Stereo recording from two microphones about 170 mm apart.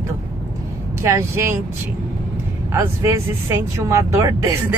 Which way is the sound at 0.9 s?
15° right (ahead or behind).